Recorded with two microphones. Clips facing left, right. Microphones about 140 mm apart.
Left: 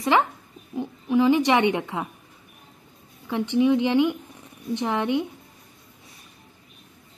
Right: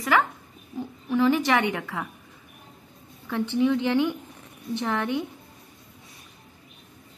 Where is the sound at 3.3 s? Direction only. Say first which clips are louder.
Left 3 dB; 15° left (ahead or behind).